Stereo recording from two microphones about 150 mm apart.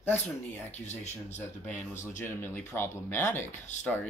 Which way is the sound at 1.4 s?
10° left (ahead or behind).